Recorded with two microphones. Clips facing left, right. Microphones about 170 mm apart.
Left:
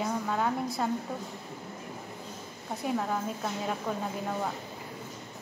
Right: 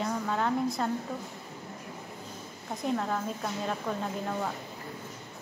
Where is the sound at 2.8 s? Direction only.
5° left (ahead or behind).